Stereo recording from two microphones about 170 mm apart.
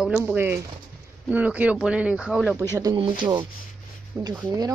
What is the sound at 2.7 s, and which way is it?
Speech, 20° right (ahead or behind).